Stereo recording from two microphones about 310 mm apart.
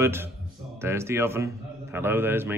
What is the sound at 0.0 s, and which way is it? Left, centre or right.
A man's voice, centre.